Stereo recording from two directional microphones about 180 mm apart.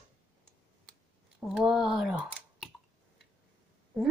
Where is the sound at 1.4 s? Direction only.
Centre (ahead or behind).